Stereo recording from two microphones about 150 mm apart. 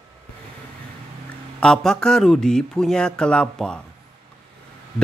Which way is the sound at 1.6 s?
5° left (ahead or behind).